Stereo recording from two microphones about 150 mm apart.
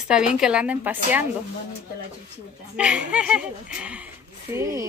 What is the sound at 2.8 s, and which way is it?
A woman's voice, 5° right (ahead or behind).